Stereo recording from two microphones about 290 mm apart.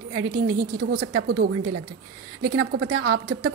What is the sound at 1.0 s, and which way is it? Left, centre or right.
A woman's voice, right.